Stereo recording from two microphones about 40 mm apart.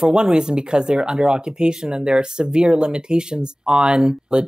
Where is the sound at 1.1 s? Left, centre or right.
Centre.